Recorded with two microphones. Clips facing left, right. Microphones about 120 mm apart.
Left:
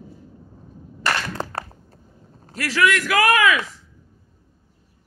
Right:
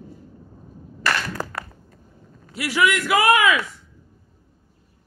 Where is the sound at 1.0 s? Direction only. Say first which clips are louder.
Even; 25° left (ahead or behind).